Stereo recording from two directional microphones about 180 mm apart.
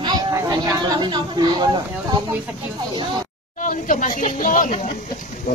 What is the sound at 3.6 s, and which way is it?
Speech, 45° left (ahead or behind).